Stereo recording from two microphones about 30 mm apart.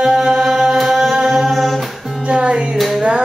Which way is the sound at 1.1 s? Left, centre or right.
Centre.